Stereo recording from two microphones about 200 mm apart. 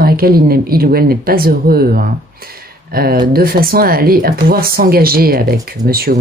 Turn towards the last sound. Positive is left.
turn(degrees=-50)  # may be behind; listen again after turning